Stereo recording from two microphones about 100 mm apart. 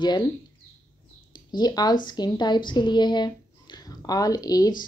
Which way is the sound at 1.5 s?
45° left (ahead or behind).